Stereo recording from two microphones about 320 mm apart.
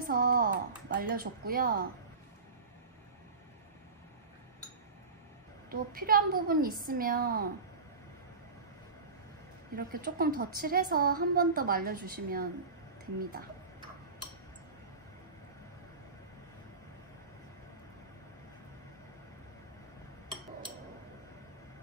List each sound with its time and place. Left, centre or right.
0.0 s speech: right
5.7 s a woman's voice: right
9.8 s a woman's voice: right